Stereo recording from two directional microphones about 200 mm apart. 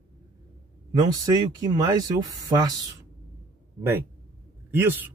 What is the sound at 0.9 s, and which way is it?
Speech, 20° right (ahead or behind).